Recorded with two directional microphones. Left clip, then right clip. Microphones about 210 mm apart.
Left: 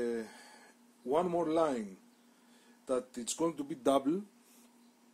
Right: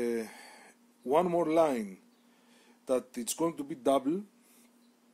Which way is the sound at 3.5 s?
10° right (ahead or behind).